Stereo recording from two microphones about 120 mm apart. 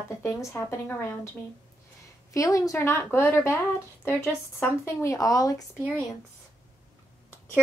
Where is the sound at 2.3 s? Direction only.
25° left (ahead or behind).